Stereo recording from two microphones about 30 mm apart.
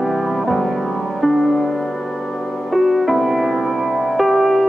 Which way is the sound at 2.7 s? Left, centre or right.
Centre.